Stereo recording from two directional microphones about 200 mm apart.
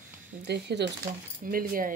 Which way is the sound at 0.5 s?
60° right (ahead or behind).